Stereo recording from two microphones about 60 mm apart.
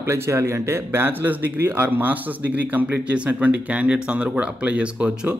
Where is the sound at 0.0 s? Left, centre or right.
Right.